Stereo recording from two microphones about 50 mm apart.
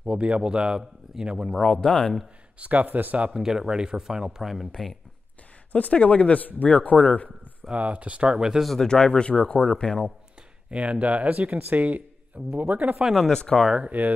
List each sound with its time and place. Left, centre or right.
0.0 s speech: right
1.5 s speech: centre
2.6 s speech: right
3.3 s speech: centre
5.7 s speech: left
7.7 s speech: right
8.8 s speech: centre
9.3 s speech: left
10.7 s speech: right
12.9 s speech: centre
13.3 s speech: centre
13.7 s speech: right